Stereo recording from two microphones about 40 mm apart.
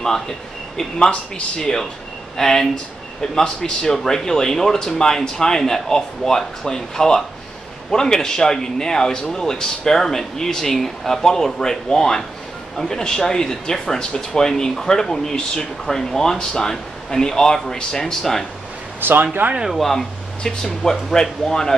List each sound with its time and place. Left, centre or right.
0.7 s speech: centre
18.9 s speech: right
19.7 s speech: centre